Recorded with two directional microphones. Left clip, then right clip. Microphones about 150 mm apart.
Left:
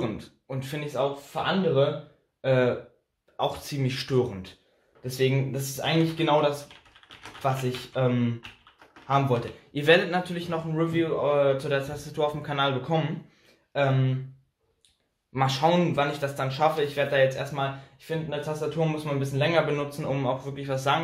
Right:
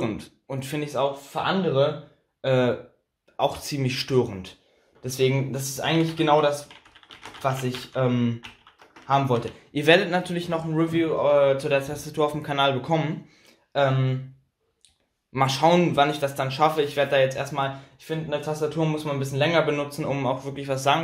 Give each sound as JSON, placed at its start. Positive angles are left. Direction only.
{"t": 0.0, "sound": "speech", "side_deg": -45}
{"t": 15.3, "sound": "speech", "side_deg": -50}